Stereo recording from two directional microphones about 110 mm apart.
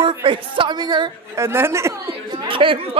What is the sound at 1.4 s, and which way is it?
Speech, 20° right (ahead or behind).